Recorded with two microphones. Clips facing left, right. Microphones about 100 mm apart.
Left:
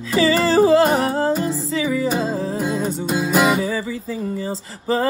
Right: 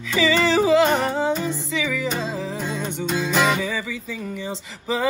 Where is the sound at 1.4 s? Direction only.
40° left (ahead or behind).